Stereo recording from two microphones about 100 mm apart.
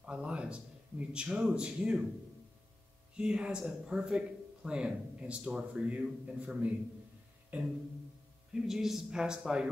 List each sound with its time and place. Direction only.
0.0 s a man's voice: 10° right (ahead or behind)
3.2 s speech: 10° right (ahead or behind)
8.5 s speech: 5° right (ahead or behind)